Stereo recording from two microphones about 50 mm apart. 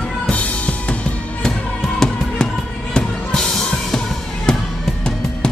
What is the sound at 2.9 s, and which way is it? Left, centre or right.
Music, centre.